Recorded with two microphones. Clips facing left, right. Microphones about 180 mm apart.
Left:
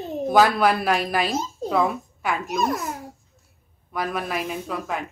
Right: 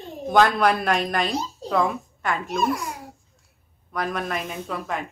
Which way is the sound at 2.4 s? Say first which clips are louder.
Right 1 dB; 45° left (ahead or behind).